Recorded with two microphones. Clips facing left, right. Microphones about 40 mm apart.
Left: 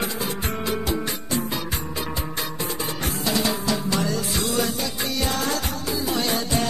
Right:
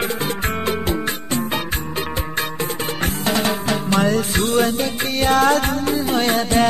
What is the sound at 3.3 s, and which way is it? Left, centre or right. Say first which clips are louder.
Music: right 3 dB; right.